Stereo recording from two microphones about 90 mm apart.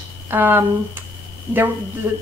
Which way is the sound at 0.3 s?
25° right (ahead or behind).